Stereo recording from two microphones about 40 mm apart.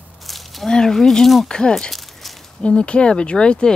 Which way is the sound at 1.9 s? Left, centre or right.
Centre.